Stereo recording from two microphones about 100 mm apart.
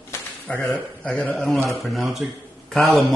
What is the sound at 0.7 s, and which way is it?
Speech, 10° left (ahead or behind).